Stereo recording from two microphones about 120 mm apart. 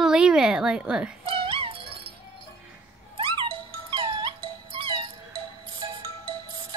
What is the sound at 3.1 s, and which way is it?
Music, 45° right (ahead or behind).